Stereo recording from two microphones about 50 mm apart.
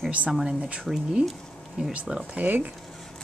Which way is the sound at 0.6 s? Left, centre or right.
Right.